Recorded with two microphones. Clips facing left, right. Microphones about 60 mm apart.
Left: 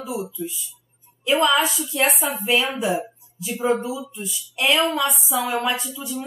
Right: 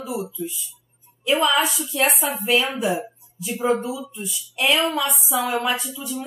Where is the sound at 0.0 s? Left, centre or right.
Centre.